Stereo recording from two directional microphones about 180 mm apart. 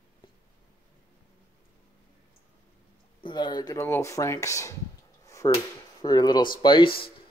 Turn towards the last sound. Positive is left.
turn(degrees=25)  # may be behind; listen again after turning